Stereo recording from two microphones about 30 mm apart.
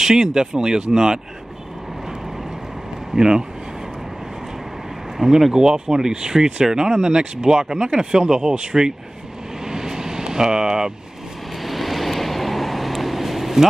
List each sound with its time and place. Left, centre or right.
0.0 s speech: right
3.2 s speech: right
5.5 s speech: right
9.7 s vehicle: centre
11.6 s vehicle: centre